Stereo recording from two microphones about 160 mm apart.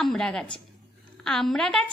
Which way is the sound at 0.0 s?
5° left (ahead or behind).